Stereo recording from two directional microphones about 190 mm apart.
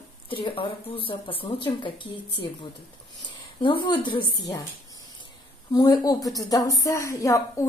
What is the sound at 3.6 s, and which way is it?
A woman's voice, 25° left (ahead or behind).